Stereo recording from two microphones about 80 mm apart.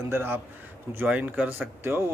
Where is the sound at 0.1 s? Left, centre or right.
Right.